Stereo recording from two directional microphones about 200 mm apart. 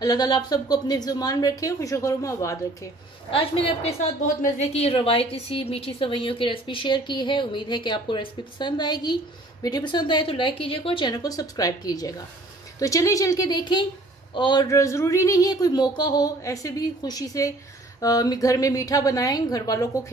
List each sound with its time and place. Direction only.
0.0 s a woman's voice: 20° left (ahead or behind)
3.3 s a woman's voice: 25° left (ahead or behind)